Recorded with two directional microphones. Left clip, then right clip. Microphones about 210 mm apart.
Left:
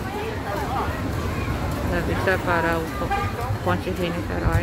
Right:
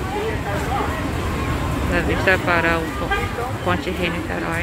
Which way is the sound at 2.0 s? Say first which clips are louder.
Right 5 dB; 10° left (ahead or behind).